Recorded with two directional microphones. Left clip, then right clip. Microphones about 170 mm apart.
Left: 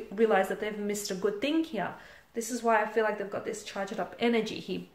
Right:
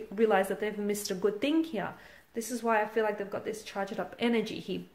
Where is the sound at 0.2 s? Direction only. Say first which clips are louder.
Left 1 dB; 30° right (ahead or behind).